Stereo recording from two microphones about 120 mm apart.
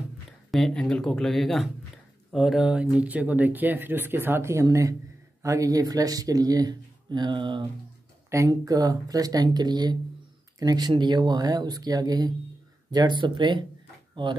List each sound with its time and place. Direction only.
0.5 s speech: 5° left (ahead or behind); by 7.6 s 40° right (ahead or behind)
8.3 s speech: 30° right (ahead or behind)